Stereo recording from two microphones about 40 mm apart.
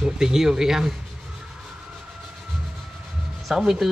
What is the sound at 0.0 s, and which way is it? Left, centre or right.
Speech, centre.